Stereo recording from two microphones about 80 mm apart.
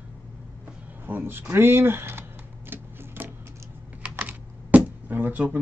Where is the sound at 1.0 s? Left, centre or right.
Right.